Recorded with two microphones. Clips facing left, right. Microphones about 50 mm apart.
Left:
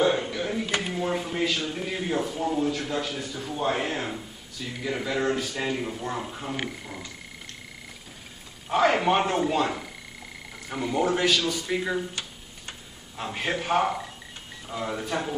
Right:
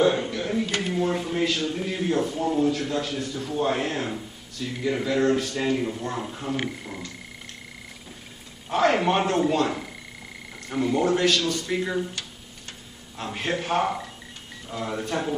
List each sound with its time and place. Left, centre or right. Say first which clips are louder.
0.0 s speech: right 2 dB; centre
8.6 s speech: even; centre
13.2 s speech: right 1 dB; centre